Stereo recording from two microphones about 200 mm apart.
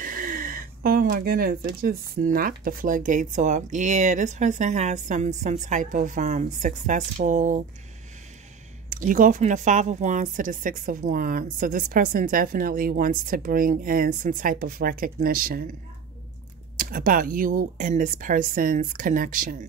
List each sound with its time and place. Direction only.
0.0 s speech: 45° right (ahead or behind)
8.9 s a woman's voice: 40° right (ahead or behind)
16.7 s a woman's voice: 45° right (ahead or behind)